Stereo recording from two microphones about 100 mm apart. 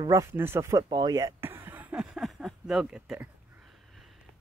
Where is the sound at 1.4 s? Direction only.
20° right (ahead or behind).